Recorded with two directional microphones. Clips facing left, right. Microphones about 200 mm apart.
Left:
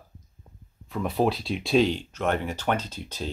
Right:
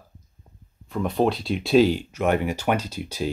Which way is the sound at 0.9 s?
5° left (ahead or behind).